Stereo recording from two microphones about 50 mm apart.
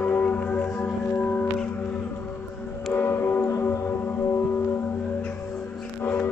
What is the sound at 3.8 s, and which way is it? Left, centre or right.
Music, left.